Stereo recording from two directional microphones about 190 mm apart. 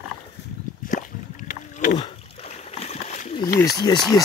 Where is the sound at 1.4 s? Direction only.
50° left (ahead or behind).